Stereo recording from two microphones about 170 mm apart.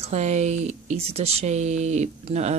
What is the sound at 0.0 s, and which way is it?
Speech, 40° right (ahead or behind).